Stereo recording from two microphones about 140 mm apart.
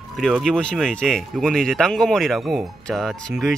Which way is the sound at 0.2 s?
5° left (ahead or behind).